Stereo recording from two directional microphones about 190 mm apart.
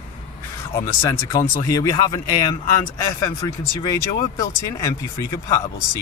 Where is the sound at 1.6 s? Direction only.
15° left (ahead or behind).